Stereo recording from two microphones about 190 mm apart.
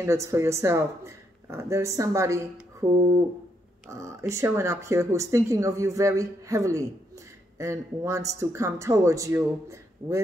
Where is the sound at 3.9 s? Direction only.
15° right (ahead or behind).